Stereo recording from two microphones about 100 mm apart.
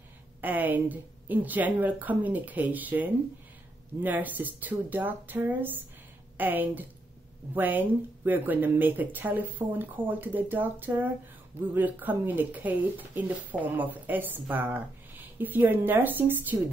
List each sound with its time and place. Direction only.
0.4 s speech: 20° right (ahead or behind)